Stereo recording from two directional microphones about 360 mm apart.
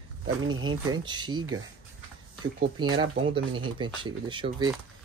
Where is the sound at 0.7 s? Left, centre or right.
Centre.